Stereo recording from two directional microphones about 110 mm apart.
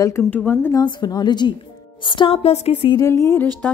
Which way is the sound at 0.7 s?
40° left (ahead or behind).